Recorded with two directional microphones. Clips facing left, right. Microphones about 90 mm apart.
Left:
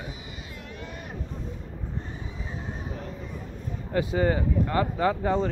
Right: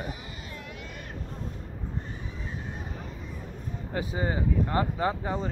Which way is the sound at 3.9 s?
20° right (ahead or behind).